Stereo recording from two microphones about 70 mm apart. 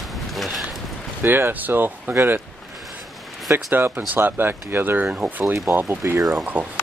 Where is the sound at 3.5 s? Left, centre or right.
Right.